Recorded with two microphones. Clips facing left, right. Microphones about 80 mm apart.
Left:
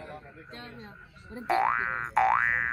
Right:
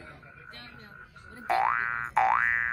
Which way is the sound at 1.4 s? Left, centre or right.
Centre.